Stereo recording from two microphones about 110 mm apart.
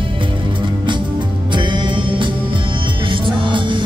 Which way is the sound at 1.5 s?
45° right (ahead or behind).